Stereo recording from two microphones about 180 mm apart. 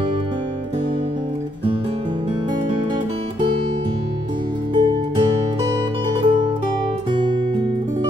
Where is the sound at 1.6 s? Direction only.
30° right (ahead or behind).